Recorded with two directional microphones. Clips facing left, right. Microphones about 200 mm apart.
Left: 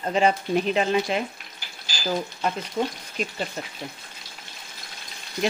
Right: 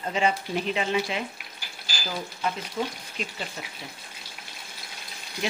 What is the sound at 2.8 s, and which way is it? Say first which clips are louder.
Speech: left 5 dB; 45° left (ahead or behind).